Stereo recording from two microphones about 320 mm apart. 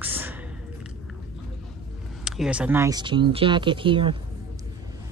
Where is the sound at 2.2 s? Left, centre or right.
Centre.